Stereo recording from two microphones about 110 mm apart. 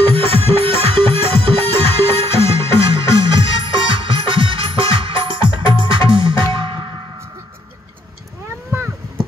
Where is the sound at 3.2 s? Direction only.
45° right (ahead or behind).